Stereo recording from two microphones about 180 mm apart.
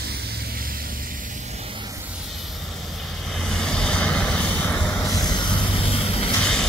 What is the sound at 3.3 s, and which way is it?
Vehicle, centre (ahead or behind).